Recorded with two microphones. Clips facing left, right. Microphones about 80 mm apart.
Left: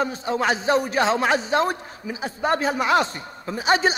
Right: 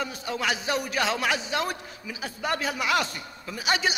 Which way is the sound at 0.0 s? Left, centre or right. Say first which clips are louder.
Left 7 dB; left.